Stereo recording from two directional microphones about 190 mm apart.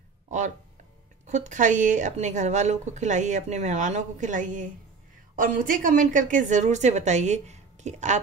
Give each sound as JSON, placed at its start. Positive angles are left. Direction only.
{"t": 1.2, "sound": "a woman's voice", "side_deg": -40}